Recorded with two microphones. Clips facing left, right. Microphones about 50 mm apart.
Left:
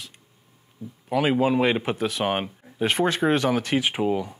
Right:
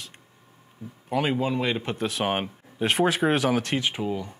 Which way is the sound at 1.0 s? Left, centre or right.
Centre.